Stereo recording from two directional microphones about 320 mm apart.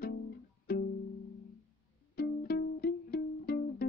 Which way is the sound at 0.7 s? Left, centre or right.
Left.